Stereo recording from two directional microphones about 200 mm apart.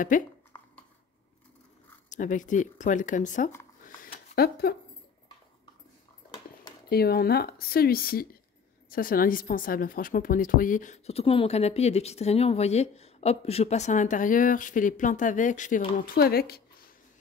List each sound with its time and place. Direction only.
0.1 s a woman's voice: 40° left (ahead or behind)
0.5 s a sound: 10° left (ahead or behind)
2.0 s a woman's voice: 40° left (ahead or behind)
4.4 s speech: 50° left (ahead or behind)
6.9 s a woman's voice: 50° left (ahead or behind)
16.0 s a woman's voice: 50° left (ahead or behind)